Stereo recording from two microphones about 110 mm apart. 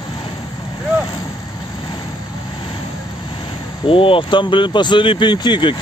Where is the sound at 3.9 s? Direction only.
55° left (ahead or behind).